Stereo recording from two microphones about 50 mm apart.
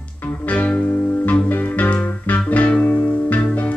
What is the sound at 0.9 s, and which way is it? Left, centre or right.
Music, left.